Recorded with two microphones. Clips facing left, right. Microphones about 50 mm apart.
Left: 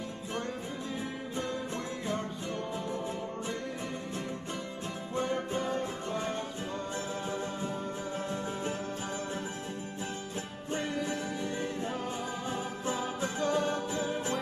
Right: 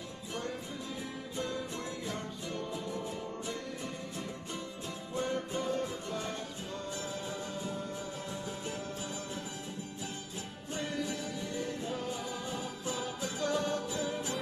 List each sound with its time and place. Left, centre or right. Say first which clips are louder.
5.1 s music: left 2 dB; left
10.7 s music: left 3 dB; left